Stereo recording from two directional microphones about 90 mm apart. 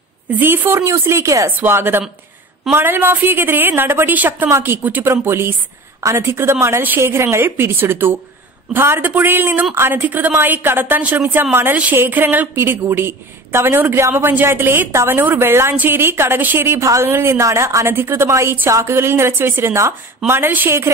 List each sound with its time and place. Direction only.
0.4 s speech: 25° right (ahead or behind)